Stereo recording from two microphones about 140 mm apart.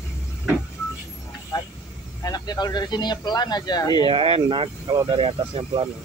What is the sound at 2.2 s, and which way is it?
Speech, 30° left (ahead or behind).